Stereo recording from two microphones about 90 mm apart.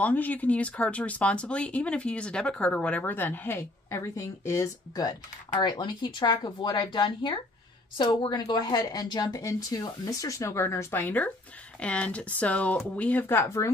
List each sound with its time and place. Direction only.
0.0 s speech: 20° left (ahead or behind)
5.6 s speech: 60° left (ahead or behind)
8.4 s speech: 50° left (ahead or behind); by 13.7 s 30° left (ahead or behind)